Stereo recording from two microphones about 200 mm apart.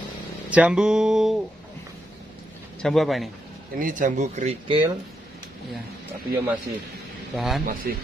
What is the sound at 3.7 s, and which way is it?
Speech, 40° right (ahead or behind).